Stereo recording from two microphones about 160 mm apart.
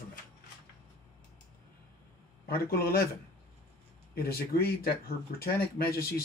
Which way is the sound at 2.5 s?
70° left (ahead or behind).